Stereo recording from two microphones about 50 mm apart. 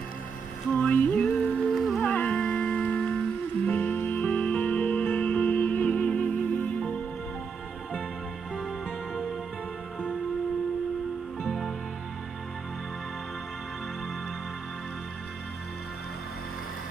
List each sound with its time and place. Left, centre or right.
0.7 s music: left
1.2 s music: centre
2.0 s music: left
6.5 s music: left
8.5 s music: centre